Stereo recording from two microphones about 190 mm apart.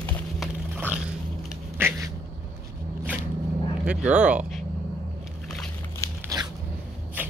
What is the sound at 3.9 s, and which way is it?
Speech, 5° right (ahead or behind).